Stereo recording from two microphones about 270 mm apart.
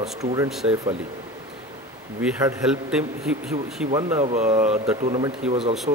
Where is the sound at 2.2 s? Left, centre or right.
Centre.